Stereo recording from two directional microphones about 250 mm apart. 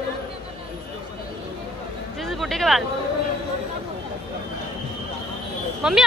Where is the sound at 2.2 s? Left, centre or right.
Centre.